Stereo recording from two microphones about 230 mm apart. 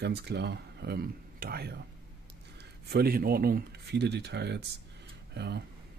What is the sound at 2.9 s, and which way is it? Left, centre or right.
Speech, right.